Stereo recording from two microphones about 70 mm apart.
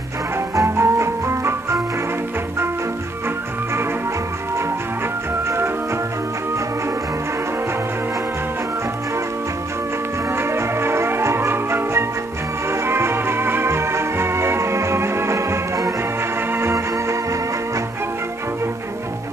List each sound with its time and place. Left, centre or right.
0.6 s music: right
10.3 s music: right